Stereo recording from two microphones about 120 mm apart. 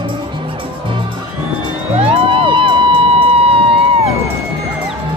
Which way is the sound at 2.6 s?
45° right (ahead or behind).